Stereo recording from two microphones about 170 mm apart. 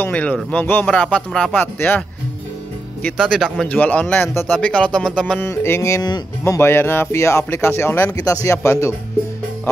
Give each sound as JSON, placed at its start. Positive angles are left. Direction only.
{"t": 0.0, "sound": "speech", "side_deg": 10}